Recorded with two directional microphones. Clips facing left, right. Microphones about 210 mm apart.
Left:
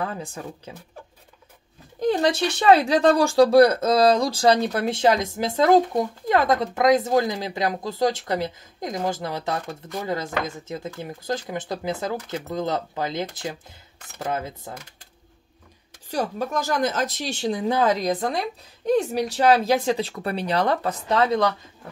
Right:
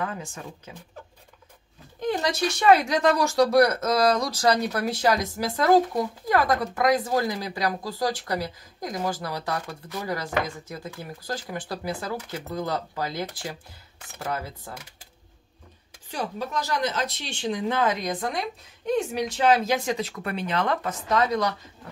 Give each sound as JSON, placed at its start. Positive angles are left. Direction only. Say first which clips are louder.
{"t": 0.0, "sound": "speech", "louder": "left 2 dB", "side_deg": 35}
{"t": 2.0, "sound": "speech", "louder": "left 5 dB", "side_deg": 30}
{"t": 16.1, "sound": "speech", "louder": "left 5 dB", "side_deg": 45}